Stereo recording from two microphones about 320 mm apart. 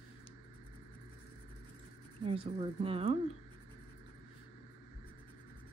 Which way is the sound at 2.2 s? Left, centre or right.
Centre.